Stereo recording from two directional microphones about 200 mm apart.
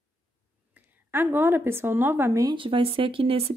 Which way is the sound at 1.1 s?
10° right (ahead or behind).